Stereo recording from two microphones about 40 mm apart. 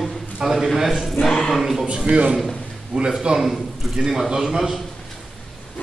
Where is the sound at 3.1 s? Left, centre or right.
Centre.